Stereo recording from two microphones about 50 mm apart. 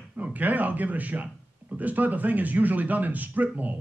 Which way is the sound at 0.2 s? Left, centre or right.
Right.